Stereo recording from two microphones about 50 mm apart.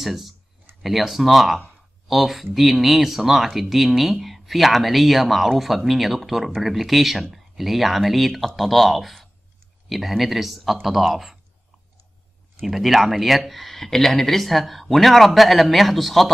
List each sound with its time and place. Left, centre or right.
0.0 s speech: centre
12.6 s speech: centre